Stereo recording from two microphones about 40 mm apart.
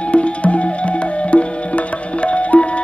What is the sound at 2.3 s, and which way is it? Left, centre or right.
Music, left.